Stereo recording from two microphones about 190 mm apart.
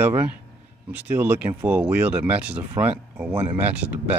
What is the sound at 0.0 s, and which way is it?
Speech, 10° right (ahead or behind).